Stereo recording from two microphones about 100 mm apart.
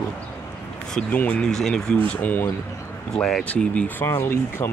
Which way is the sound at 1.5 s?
5° left (ahead or behind).